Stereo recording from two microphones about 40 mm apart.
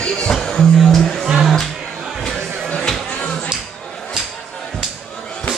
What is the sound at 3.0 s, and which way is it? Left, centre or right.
Music, left.